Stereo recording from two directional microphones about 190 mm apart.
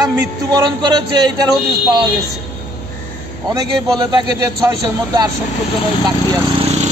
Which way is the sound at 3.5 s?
20° right (ahead or behind).